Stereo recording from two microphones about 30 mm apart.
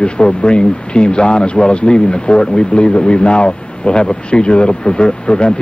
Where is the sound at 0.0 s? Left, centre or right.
Left.